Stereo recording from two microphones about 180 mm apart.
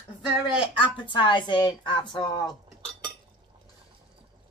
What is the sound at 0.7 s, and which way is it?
A woman's voice, 30° left (ahead or behind).